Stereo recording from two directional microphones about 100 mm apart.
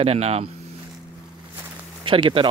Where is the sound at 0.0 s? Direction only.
90° right.